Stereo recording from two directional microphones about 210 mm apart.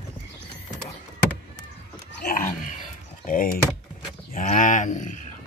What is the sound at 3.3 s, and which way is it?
Computer keyboard, 40° left (ahead or behind).